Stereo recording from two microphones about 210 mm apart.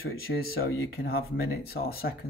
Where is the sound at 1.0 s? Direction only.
45° left (ahead or behind).